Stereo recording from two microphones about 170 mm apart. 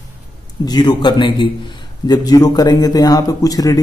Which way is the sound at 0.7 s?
25° left (ahead or behind).